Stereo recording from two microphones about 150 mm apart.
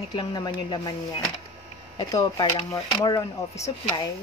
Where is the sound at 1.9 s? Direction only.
30° left (ahead or behind).